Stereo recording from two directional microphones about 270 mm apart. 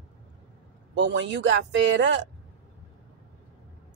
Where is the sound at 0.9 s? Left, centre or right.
Right.